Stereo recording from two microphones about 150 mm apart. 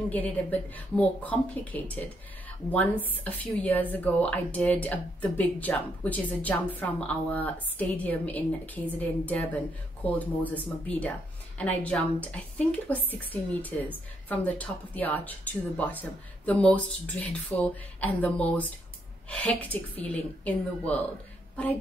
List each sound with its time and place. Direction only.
0.1 s speech: 10° left (ahead or behind)